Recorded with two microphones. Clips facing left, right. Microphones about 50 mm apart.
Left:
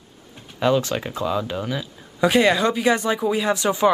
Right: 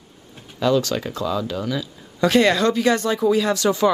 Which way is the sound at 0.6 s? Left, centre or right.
Left.